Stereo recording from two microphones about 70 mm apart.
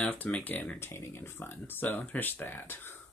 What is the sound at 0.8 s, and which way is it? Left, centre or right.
Speech, left.